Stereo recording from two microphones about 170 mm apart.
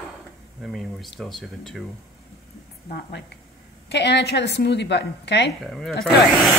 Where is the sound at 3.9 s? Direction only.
85° left.